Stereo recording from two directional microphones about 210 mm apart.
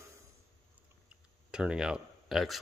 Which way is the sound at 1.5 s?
5° right (ahead or behind).